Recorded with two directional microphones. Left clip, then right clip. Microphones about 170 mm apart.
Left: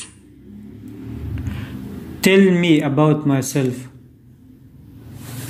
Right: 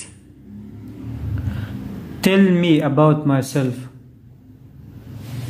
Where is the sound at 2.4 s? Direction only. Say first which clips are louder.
Left 1 dB; 30° right (ahead or behind).